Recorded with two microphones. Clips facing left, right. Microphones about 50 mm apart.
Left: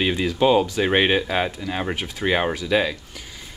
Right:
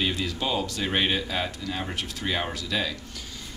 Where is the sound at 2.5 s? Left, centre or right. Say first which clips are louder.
Left 8 dB; left.